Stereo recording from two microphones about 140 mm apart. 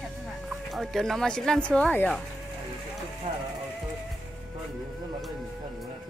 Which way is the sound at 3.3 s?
40° right (ahead or behind).